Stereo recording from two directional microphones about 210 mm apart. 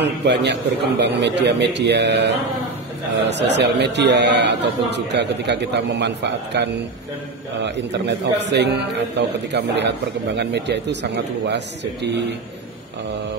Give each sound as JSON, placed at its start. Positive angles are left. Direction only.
{"t": 0.0, "sound": "a man's voice", "side_deg": -55}